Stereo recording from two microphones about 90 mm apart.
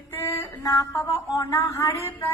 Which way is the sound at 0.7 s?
35° left (ahead or behind).